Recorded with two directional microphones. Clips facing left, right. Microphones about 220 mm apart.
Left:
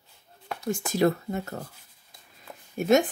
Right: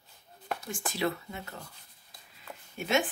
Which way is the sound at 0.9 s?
45° left (ahead or behind).